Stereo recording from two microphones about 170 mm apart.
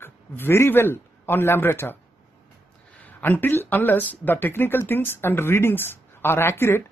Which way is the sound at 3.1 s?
10° left (ahead or behind).